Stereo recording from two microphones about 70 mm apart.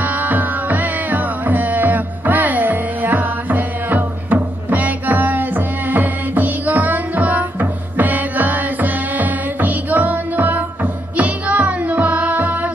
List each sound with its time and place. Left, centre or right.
0.0 s music: right